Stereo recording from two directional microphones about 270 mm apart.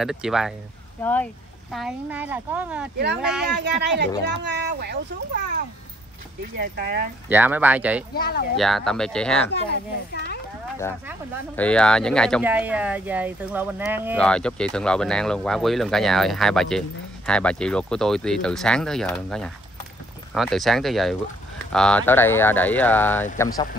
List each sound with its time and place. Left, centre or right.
0.0 s speech: centre
3.5 s a child's voice: right
7.2 s speech: centre
8.1 s speech: left
8.5 s speech: centre
9.5 s speech: left
11.5 s speech: centre
14.2 s speech: centre